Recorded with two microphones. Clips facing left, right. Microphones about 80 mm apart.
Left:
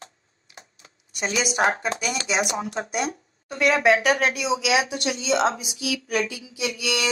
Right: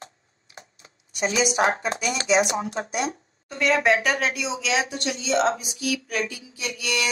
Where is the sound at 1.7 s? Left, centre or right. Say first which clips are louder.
Even; right.